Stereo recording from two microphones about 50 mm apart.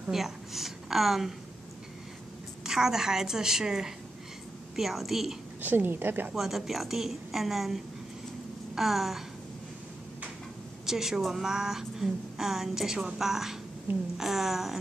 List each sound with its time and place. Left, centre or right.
0.1 s a woman's voice: centre
2.6 s a woman's voice: centre
5.6 s a woman's voice: right
6.3 s a woman's voice: centre
10.9 s a woman's voice: centre